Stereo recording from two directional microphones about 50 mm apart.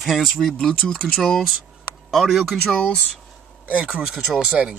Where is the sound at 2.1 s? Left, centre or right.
Centre.